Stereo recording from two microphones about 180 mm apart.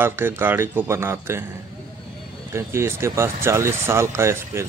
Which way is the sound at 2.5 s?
15° right (ahead or behind).